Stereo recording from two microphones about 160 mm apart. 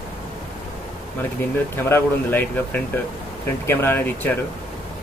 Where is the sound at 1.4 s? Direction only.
15° left (ahead or behind).